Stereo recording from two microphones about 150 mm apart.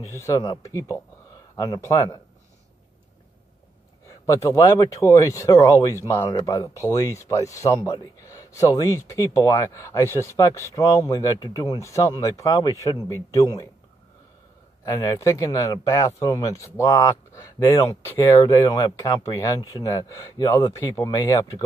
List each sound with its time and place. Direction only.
0.2 s speech: 25° left (ahead or behind)
4.3 s speech: 20° left (ahead or behind)
14.9 s speech: 20° left (ahead or behind)